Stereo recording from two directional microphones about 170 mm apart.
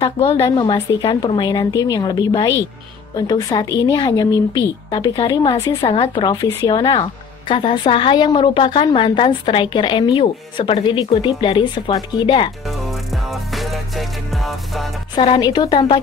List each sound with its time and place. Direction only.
0.0 s a woman's voice: 30° left (ahead or behind)
12.6 s music: centre (ahead or behind)
15.1 s a woman's voice: 30° left (ahead or behind)